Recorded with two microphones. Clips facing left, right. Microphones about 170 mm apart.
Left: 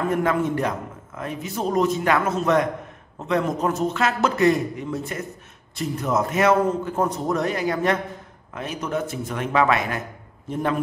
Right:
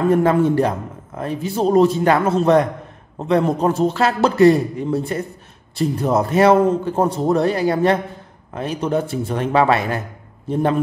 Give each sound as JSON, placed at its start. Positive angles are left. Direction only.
{"t": 0.1, "sound": "a man's voice", "side_deg": -30}